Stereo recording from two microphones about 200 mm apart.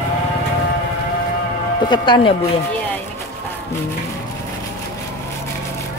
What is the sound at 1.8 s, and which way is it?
Speech, 25° left (ahead or behind).